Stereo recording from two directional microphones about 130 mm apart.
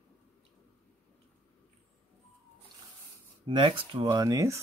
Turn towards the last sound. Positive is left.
turn(degrees=-25)  # may be behind; listen again after turning